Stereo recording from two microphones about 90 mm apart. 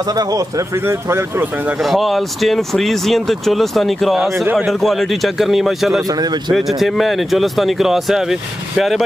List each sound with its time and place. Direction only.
0.0 s a man's voice: 45° right (ahead or behind)
0.8 s speech: 30° right (ahead or behind)
1.8 s speech: centre (ahead or behind)
6.0 s a man's voice: 50° right (ahead or behind)
6.5 s speech: centre (ahead or behind)